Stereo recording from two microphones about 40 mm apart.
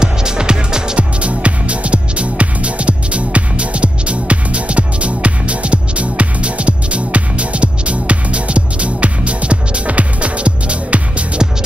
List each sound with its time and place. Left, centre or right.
0.0 s music: centre
0.9 s music: right